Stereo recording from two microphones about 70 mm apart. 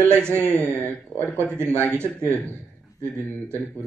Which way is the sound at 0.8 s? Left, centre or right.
Left.